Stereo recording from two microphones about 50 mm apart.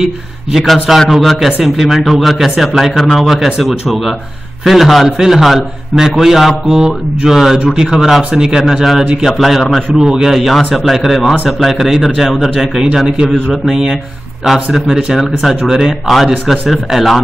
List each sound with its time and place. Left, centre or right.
0.0 s a man's voice: centre
9.9 s a man's voice: centre